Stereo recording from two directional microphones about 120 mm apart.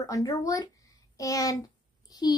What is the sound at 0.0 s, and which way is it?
A child's voice, 30° left (ahead or behind).